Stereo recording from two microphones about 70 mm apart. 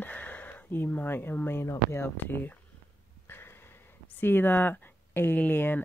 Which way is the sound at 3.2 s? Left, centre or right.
Left.